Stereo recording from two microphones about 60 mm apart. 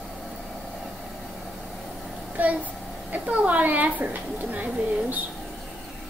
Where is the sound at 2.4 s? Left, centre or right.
Right.